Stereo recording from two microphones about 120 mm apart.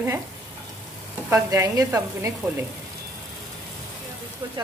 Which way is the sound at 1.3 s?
30° right (ahead or behind).